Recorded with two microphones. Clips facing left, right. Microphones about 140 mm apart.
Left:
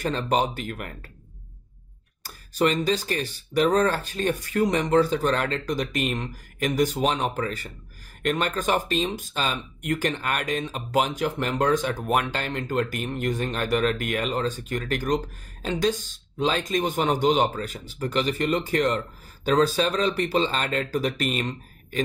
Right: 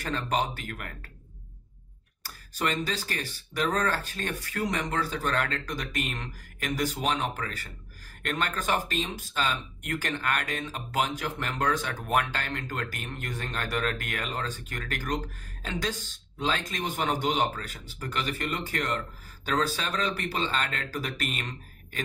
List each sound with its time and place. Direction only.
0.0 s speech: 20° left (ahead or behind)
2.2 s speech: 20° left (ahead or behind)